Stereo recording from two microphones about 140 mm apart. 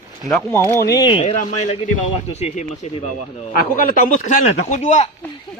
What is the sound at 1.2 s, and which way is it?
Speech, 45° left (ahead or behind).